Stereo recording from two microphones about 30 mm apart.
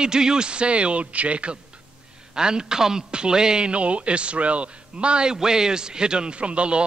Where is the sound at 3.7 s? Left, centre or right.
Right.